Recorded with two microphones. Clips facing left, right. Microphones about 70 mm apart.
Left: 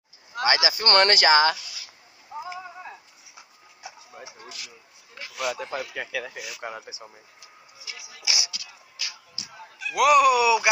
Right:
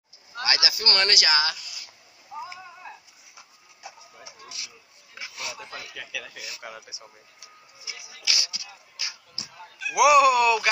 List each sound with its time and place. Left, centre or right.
0.4 s speech: left
2.3 s a sound: left
4.2 s a sound: left
5.4 s speech: left
6.2 s speech: left
7.9 s music: centre
8.2 s music: centre
8.5 s music: right
9.8 s speech: centre